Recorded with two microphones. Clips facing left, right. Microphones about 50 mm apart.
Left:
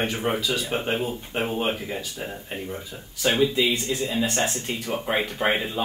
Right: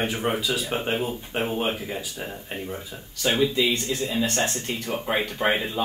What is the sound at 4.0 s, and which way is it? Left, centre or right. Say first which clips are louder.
Speech: even; centre.